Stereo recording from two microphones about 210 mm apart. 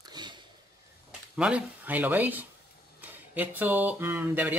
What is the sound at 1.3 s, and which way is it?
Speech, 5° right (ahead or behind).